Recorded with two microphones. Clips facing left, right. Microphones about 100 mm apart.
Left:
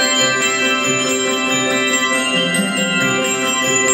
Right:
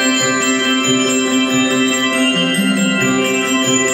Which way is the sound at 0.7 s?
Centre (ahead or behind).